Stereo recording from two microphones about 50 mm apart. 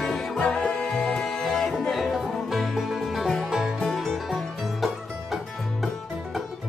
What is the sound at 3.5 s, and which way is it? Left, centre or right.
Music, centre.